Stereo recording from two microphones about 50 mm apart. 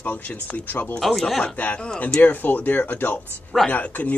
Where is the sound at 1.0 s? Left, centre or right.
Centre.